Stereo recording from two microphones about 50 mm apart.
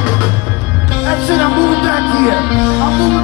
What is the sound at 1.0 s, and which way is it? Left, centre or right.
Music, centre.